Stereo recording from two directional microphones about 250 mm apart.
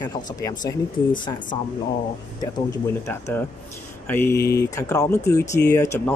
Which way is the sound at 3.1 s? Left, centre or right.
Centre.